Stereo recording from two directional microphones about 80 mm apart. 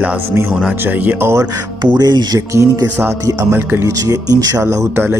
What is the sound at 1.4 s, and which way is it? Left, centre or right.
Speech, right.